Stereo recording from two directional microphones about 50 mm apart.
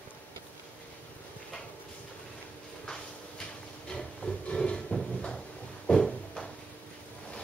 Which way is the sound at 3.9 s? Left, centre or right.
Centre.